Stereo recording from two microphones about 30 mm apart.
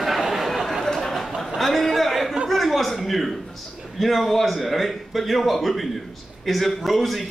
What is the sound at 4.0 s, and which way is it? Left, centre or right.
A man's voice, centre.